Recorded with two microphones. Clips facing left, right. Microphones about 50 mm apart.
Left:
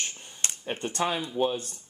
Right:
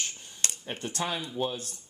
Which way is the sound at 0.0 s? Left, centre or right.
Left.